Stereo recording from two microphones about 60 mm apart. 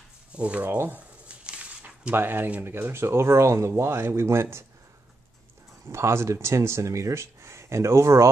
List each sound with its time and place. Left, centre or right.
0.3 s speech: right
0.7 s a sound: right
1.4 s dog: right
2.1 s speech: right
5.9 s speech: right